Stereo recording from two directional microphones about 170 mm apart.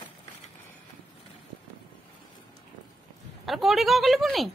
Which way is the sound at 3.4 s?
Centre (ahead or behind).